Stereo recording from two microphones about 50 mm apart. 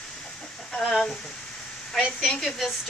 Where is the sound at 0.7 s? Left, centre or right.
Centre.